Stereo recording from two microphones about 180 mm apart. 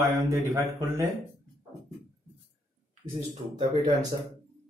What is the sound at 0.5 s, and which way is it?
Speech, 15° right (ahead or behind).